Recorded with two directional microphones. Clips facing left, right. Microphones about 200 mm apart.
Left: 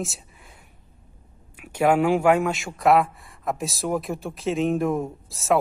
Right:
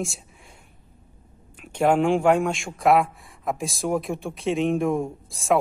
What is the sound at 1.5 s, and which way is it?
A man's voice, 5° left (ahead or behind).